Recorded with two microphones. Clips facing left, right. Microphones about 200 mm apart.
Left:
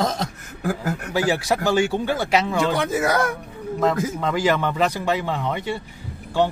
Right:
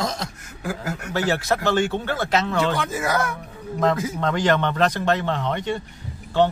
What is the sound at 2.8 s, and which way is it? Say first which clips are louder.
Speech: left 3 dB; 60° left (ahead or behind).